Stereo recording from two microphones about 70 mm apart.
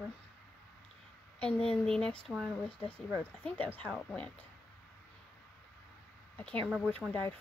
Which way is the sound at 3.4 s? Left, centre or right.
Left.